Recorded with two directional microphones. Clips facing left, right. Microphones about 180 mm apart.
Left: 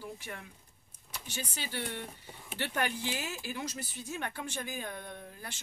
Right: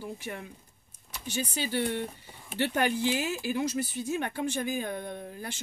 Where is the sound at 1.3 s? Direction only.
15° right (ahead or behind).